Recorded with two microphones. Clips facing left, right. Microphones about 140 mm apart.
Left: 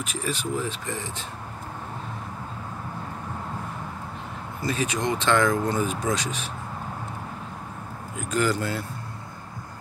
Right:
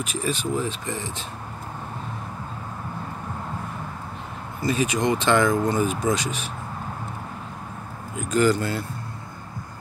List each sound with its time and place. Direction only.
0.0 s speech: 20° right (ahead or behind)
4.6 s speech: 10° right (ahead or behind)
8.3 s speech: centre (ahead or behind)